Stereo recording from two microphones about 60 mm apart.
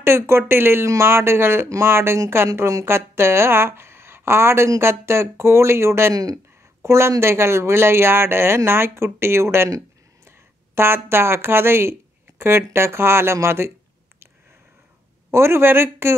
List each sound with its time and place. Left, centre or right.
0.0 s speech: right
6.1 s speech: right
6.8 s speech: right
15.3 s speech: right